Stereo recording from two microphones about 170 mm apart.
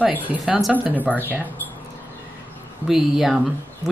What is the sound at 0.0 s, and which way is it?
Speech, 10° right (ahead or behind).